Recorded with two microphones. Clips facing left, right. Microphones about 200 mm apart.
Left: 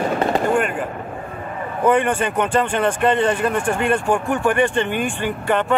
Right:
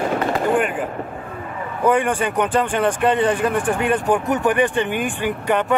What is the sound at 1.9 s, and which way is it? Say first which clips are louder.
Speech: left 1 dB; 15° right (ahead or behind).